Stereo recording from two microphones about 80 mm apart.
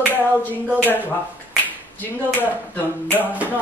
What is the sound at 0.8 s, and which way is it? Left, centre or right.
A woman's voice, left.